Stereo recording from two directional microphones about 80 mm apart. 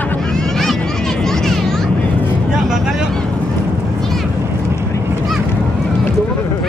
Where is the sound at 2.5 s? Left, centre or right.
Centre.